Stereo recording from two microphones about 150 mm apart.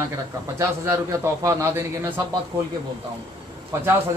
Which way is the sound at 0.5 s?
20° right (ahead or behind).